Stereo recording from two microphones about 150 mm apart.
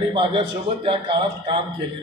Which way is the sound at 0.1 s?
35° right (ahead or behind).